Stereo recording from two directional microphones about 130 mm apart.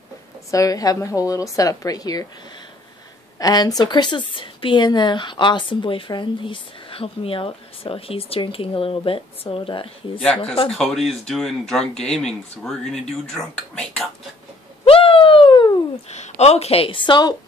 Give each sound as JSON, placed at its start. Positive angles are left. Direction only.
{"t": 0.5, "sound": "a woman's voice", "side_deg": 25}
{"t": 3.3, "sound": "a woman's voice", "side_deg": 30}
{"t": 10.7, "sound": "speech", "side_deg": 5}
{"t": 14.9, "sound": "a sound", "side_deg": 45}
{"t": 16.1, "sound": "a woman's voice", "side_deg": 55}